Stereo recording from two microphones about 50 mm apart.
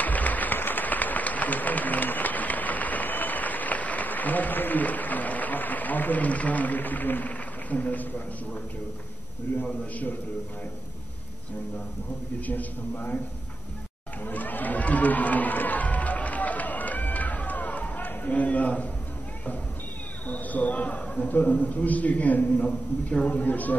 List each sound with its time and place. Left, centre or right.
0.0 s a sound: left
9.5 s a man's voice: left
12.4 s a man's voice: left
14.2 s a sound: left
20.2 s a man's voice: left
22.6 s a man's voice: left